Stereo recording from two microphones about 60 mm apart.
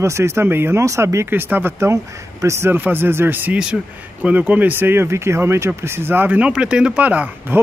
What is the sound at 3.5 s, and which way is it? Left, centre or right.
Speech, centre.